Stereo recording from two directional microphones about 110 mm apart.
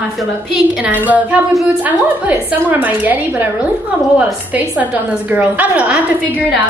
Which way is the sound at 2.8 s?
15° right (ahead or behind).